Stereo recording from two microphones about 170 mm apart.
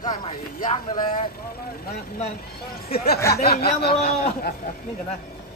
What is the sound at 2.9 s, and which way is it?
Speech, 65° left (ahead or behind).